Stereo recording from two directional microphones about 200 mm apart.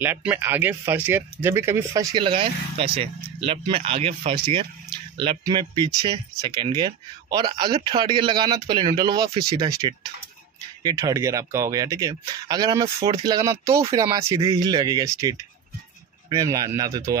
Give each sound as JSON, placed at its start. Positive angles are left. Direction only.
{"t": 0.0, "sound": "speech", "side_deg": -10}
{"t": 10.8, "sound": "speech", "side_deg": -20}